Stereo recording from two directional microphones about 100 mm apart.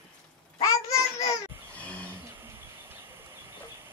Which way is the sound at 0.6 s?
35° left (ahead or behind).